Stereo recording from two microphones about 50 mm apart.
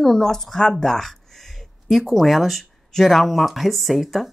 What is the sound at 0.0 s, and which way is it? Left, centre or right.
Speech, centre.